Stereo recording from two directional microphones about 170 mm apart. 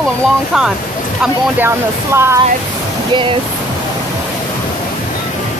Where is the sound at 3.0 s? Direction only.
30° right (ahead or behind).